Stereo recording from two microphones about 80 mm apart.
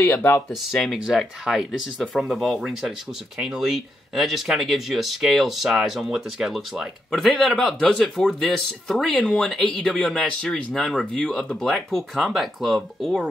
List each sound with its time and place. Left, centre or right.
0.1 s speech: left
0.7 s speech: centre